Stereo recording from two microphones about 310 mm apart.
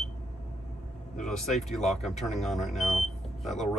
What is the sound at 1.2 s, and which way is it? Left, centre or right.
Speech, centre.